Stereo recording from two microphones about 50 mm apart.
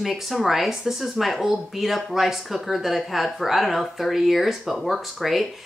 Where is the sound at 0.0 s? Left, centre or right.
Centre.